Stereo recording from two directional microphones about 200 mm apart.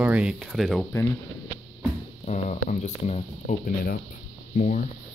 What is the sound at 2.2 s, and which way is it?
Speech, 35° left (ahead or behind).